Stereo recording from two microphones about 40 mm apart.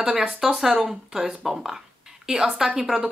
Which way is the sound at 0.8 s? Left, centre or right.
Centre.